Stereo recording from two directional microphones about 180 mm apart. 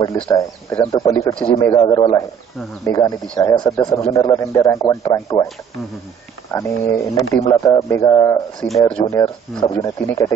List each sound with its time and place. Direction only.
0.0 s a man's voice: 15° left (ahead or behind)
6.5 s a man's voice: 15° left (ahead or behind)
8.5 s speech: centre (ahead or behind)
9.2 s speech: 20° left (ahead or behind)